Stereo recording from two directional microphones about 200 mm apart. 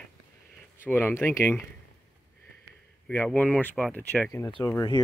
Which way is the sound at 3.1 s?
5° left (ahead or behind).